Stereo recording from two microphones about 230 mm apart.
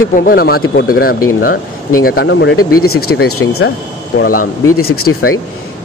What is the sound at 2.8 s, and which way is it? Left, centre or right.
Speech, left.